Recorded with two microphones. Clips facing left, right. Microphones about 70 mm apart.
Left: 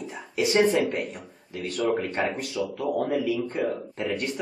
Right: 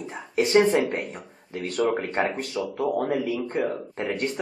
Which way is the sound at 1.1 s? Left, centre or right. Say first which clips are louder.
Right 2 dB; right.